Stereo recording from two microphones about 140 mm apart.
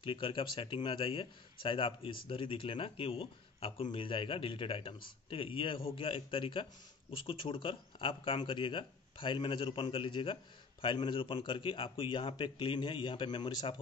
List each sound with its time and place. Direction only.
0.0 s a man's voice: 35° left (ahead or behind)